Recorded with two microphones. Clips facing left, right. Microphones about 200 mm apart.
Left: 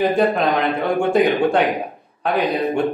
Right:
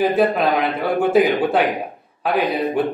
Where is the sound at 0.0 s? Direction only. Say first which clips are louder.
Even; 5° right (ahead or behind).